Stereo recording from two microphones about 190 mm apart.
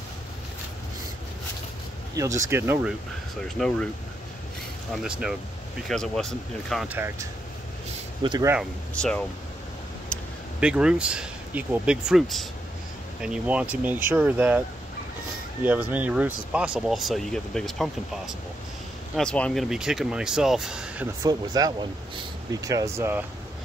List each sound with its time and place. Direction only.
2.1 s speech: 15° right (ahead or behind)
3.5 s speech: centre (ahead or behind)
5.9 s speech: centre (ahead or behind)
6.9 s speech: 10° right (ahead or behind)
8.2 s speech: 25° right (ahead or behind)
8.9 s speech: 5° left (ahead or behind)
10.1 s a sound: 5° left (ahead or behind)
10.6 s speech: 5° right (ahead or behind)
15.6 s speech: 10° right (ahead or behind)
21.2 s speech: 20° right (ahead or behind)